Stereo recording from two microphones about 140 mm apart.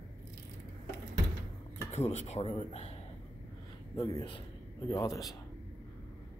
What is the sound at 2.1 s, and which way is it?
Speech, 50° left (ahead or behind).